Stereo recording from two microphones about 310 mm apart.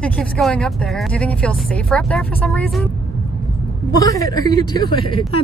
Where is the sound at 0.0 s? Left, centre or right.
Centre.